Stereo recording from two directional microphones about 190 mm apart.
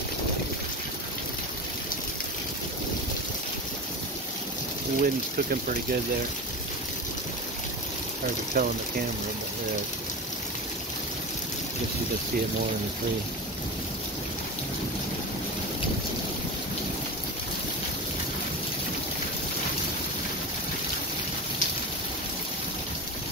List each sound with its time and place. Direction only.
5.0 s speech: 50° right (ahead or behind)
8.6 s speech: 50° right (ahead or behind)